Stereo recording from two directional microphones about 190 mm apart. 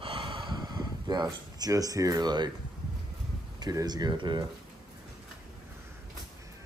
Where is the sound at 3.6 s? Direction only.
20° right (ahead or behind).